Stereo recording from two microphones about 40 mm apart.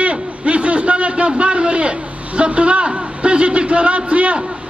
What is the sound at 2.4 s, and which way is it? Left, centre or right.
A man's voice, right.